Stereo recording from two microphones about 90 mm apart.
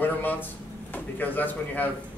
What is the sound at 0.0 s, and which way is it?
Drawer open or close, 20° left (ahead or behind).